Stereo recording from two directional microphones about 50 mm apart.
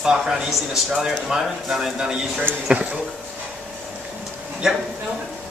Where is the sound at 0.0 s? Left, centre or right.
Centre.